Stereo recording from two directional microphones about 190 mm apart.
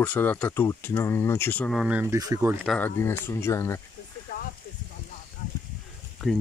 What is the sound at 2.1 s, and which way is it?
Speech, 20° right (ahead or behind).